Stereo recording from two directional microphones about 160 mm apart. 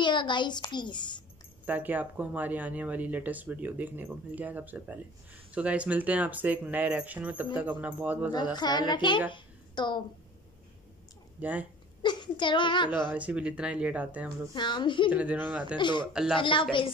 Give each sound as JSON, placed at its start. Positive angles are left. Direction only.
{"t": 0.0, "sound": "a child's voice", "side_deg": 30}
{"t": 1.7, "sound": "speech", "side_deg": -10}
{"t": 8.5, "sound": "a child's voice", "side_deg": 25}
{"t": 9.3, "sound": "a sound", "side_deg": 30}
{"t": 11.4, "sound": "speech", "side_deg": -10}
{"t": 12.0, "sound": "a child's voice", "side_deg": 30}
{"t": 13.1, "sound": "speech", "side_deg": -10}
{"t": 14.5, "sound": "a child's voice", "side_deg": 30}
{"t": 15.0, "sound": "speech", "side_deg": -10}
{"t": 15.8, "sound": "a child's voice", "side_deg": 30}
{"t": 16.1, "sound": "speech", "side_deg": -5}
{"t": 16.3, "sound": "a woman's voice", "side_deg": 30}